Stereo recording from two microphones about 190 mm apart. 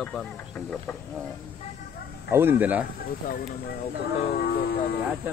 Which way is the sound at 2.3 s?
10° right (ahead or behind).